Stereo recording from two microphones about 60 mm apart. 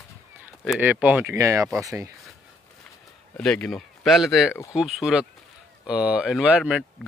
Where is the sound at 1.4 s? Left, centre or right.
Right.